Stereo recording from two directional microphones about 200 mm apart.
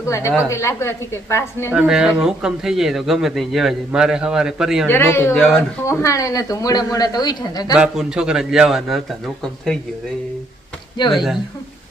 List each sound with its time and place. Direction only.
0.0 s a woman's voice: 15° left (ahead or behind)
1.7 s a man's voice: 5° right (ahead or behind)
4.8 s speech: 10° left (ahead or behind)
7.7 s a man's voice: 5° right (ahead or behind)
11.0 s speech: 20° left (ahead or behind)